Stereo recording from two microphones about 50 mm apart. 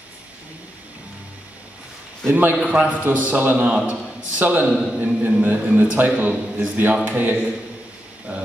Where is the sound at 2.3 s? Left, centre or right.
Right.